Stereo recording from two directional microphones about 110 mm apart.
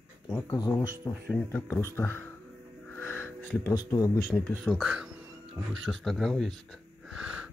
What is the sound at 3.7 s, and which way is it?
Speech, 30° left (ahead or behind).